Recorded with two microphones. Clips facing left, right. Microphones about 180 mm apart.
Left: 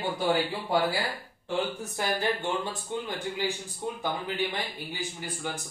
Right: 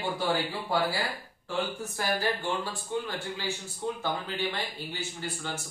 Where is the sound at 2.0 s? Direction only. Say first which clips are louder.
Left 1 dB; 20° left (ahead or behind).